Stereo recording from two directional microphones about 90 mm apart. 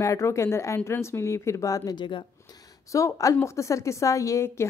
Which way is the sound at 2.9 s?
40° left (ahead or behind).